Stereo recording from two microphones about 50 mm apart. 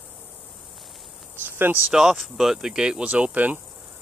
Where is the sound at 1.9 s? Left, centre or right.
Centre.